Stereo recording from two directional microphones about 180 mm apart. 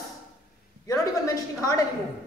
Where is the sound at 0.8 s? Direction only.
20° left (ahead or behind).